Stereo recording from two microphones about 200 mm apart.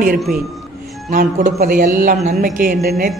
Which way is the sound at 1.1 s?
45° right (ahead or behind).